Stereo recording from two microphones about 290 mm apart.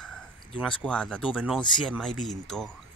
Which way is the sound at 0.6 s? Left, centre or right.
Centre.